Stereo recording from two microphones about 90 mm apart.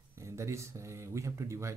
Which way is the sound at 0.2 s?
35° right (ahead or behind).